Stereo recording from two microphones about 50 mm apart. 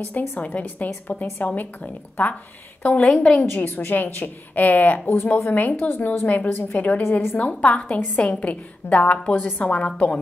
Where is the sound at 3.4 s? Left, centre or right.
Left.